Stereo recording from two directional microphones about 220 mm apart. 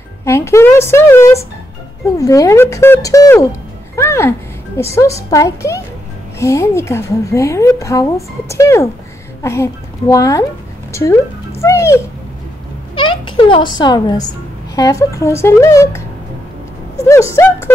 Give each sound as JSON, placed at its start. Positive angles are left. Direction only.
{"t": 0.2, "sound": "a woman's voice", "side_deg": 10}
{"t": 11.6, "sound": "a sound", "side_deg": 15}
{"t": 13.7, "sound": "a woman's voice", "side_deg": 20}
{"t": 17.1, "sound": "a woman's voice", "side_deg": 10}